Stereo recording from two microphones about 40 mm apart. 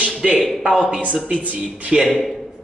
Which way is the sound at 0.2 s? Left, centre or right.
Right.